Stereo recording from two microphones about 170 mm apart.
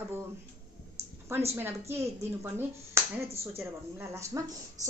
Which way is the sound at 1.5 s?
15° right (ahead or behind).